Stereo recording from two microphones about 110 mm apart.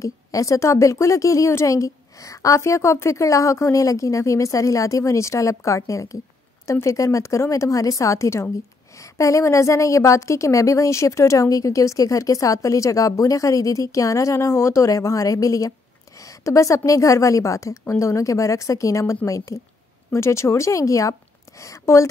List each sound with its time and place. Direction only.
0.0 s a woman's voice: 30° left (ahead or behind)